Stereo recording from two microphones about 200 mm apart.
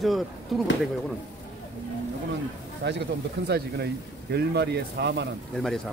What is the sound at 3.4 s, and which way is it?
Speech, 55° right (ahead or behind).